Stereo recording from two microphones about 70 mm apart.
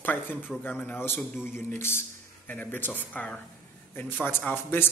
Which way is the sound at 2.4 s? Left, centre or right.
Left.